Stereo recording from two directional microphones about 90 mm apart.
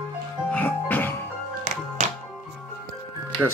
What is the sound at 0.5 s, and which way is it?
Music, 20° left (ahead or behind).